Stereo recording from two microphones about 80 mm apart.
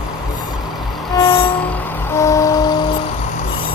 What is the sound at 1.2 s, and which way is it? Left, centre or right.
Vehicle, left.